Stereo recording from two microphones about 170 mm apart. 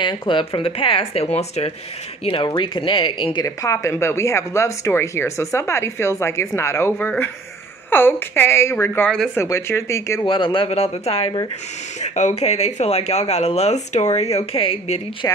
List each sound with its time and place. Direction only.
0.0 s speech: 30° left (ahead or behind)
10.2 s speech: 30° left (ahead or behind)
15.2 s speech: 20° left (ahead or behind)